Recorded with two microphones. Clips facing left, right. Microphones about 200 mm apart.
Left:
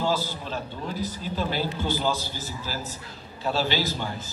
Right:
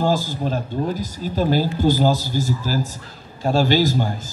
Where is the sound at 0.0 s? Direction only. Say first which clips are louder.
Right 6 dB; 45° right (ahead or behind).